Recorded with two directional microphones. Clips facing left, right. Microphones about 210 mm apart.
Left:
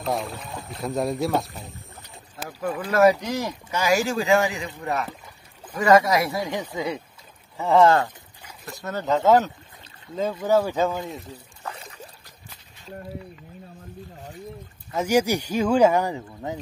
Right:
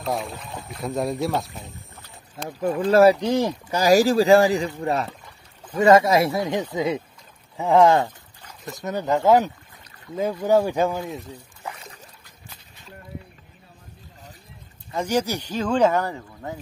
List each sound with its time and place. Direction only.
0.0 s speech: centre (ahead or behind)
2.9 s speech: 30° right (ahead or behind); by 11.1 s 15° right (ahead or behind)
11.6 s a sound: 10° right (ahead or behind)
14.9 s speech: 10° left (ahead or behind)